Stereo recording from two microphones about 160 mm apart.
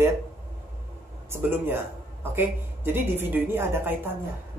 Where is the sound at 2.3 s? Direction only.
15° right (ahead or behind).